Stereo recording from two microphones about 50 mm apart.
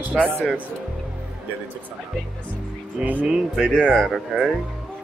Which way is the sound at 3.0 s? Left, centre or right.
Right.